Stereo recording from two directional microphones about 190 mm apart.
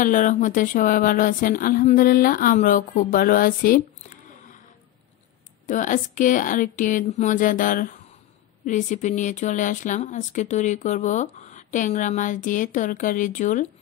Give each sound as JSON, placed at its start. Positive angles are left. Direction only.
{"t": 0.0, "sound": "speech", "side_deg": 45}
{"t": 5.7, "sound": "speech", "side_deg": 45}